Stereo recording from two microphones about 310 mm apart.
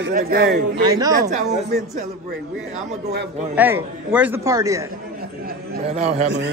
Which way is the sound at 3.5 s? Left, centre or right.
Centre.